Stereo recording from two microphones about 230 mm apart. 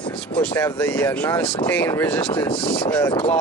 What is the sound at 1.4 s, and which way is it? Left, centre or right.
Speech, left.